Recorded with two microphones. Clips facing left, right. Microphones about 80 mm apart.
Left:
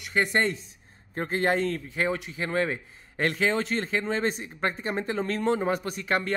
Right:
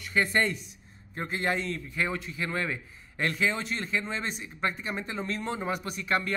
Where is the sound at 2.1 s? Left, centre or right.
Left.